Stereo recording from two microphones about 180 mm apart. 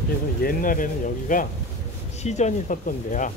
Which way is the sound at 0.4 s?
50° left (ahead or behind).